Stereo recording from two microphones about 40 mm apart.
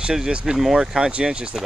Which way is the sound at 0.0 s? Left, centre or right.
Right.